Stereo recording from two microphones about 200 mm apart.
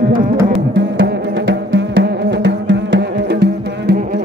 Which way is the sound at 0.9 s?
65° right (ahead or behind).